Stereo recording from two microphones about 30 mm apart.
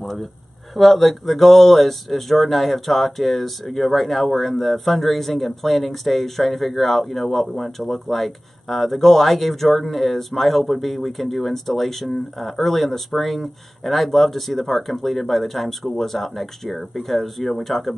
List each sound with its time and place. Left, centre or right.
0.0 s speech: centre